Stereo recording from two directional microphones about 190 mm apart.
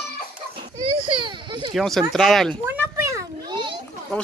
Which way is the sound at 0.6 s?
25° right (ahead or behind).